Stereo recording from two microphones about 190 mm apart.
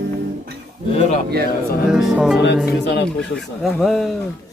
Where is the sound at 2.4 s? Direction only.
65° left (ahead or behind).